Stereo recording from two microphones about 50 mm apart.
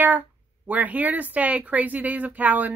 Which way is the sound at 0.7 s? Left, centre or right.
Right.